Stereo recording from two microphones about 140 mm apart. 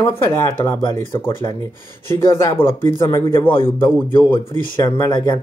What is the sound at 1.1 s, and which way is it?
Speech, 25° left (ahead or behind).